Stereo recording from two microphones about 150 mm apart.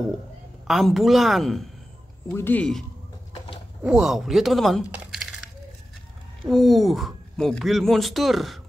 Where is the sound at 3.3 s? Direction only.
35° left (ahead or behind).